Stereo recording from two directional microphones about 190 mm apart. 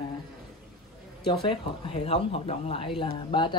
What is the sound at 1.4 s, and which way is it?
Speech, 30° left (ahead or behind).